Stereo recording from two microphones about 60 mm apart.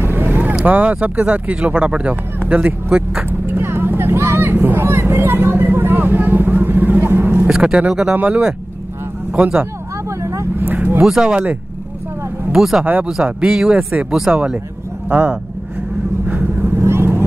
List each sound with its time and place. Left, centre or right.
0.0 s vehicle: right
0.7 s speech: right
3.3 s vehicle: right
7.4 s speech: centre
10.0 s vehicle: right
10.6 s vehicle: right
11.0 s speech: centre
12.5 s speech: centre
15.0 s speech: right
16.3 s vehicle: right